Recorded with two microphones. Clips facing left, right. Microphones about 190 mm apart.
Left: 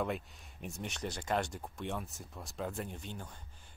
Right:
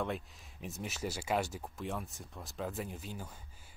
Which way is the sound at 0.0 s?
Centre (ahead or behind).